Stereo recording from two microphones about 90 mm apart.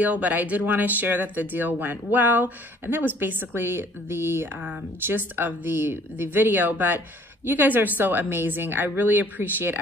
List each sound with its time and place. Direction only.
0.0 s speech: 15° right (ahead or behind)